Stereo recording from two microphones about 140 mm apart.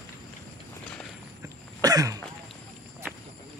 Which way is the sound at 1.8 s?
25° right (ahead or behind).